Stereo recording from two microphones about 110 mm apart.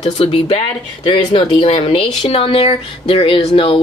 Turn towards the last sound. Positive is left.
turn(degrees=50)  # may be behind; listen again after turning